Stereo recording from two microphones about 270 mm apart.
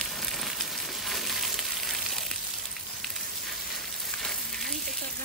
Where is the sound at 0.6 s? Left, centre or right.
Centre.